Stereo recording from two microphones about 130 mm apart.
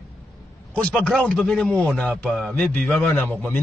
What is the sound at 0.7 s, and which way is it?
A man's voice, 5° left (ahead or behind).